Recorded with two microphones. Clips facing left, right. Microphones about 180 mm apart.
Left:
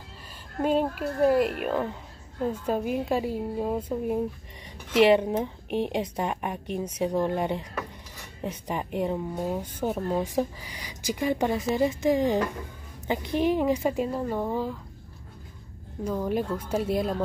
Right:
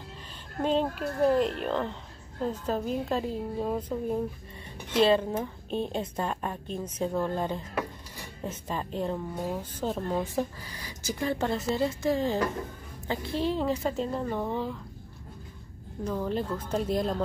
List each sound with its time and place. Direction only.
0.6 s a woman's voice: 10° left (ahead or behind)
16.0 s a woman's voice: 10° left (ahead or behind)